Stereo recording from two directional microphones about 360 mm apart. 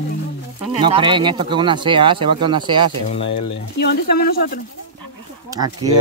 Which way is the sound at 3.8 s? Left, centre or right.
Left.